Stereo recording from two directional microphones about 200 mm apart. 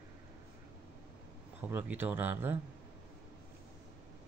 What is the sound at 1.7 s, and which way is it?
Speech, 10° right (ahead or behind).